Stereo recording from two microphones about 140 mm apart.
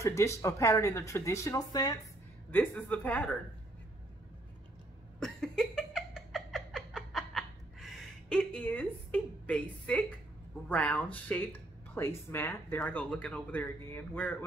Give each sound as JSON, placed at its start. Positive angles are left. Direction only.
{"t": 0.0, "sound": "speech", "side_deg": 20}
{"t": 2.5, "sound": "speech", "side_deg": 10}
{"t": 5.2, "sound": "a sound", "side_deg": 5}
{"t": 10.7, "sound": "speech", "side_deg": 10}